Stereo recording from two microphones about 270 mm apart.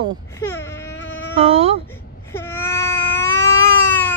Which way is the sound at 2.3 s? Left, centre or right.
Centre.